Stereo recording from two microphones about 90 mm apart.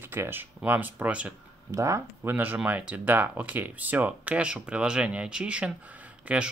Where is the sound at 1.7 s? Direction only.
35° right (ahead or behind).